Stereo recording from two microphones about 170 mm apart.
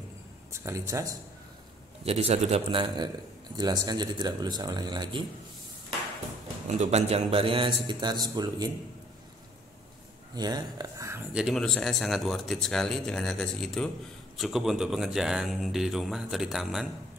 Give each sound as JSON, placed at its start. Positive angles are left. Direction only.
{"t": 0.5, "sound": "speech", "side_deg": -15}
{"t": 2.0, "sound": "a man's voice", "side_deg": -35}
{"t": 6.7, "sound": "a man's voice", "side_deg": -40}
{"t": 10.3, "sound": "speech", "side_deg": -25}
{"t": 11.3, "sound": "speech", "side_deg": 0}